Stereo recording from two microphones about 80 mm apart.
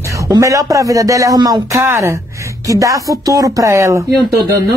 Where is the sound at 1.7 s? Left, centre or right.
Right.